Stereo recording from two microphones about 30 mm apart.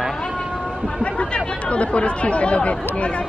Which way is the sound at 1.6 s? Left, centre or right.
Left.